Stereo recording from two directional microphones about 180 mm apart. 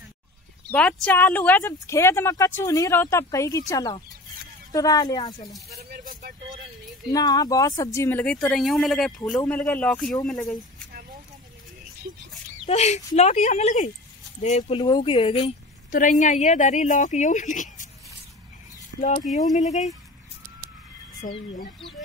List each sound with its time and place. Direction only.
0.7 s speech: 5° left (ahead or behind); by 5.5 s 25° left (ahead or behind)
5.8 s speech: 55° right (ahead or behind)
7.1 s speech: 20° left (ahead or behind); by 10.6 s 5° left (ahead or behind)
12.6 s speech: 35° left (ahead or behind)
14.6 s speech: 25° left (ahead or behind)
15.9 s speech: 45° left (ahead or behind)
18.9 s speech: 40° left (ahead or behind)
21.2 s speech: 45° left (ahead or behind)